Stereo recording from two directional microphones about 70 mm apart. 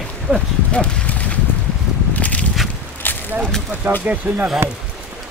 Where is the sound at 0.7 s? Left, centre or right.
Centre.